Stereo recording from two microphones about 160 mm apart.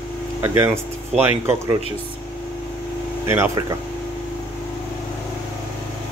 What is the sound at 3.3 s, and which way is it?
Speech, 20° right (ahead or behind).